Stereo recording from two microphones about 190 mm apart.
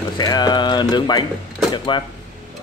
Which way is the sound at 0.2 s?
20° left (ahead or behind).